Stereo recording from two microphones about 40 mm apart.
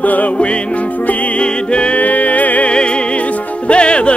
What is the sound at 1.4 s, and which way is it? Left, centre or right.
Music, left.